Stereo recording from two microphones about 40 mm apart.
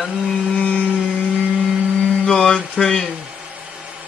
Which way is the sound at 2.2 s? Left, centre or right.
Centre.